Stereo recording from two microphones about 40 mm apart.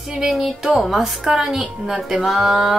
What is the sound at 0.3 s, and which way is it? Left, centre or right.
A woman's voice, centre.